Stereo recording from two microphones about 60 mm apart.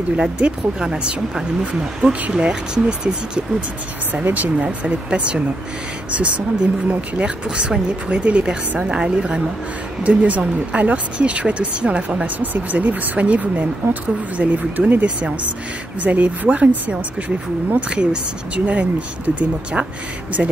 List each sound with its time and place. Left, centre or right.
0.1 s speech: centre
4.1 s speech: right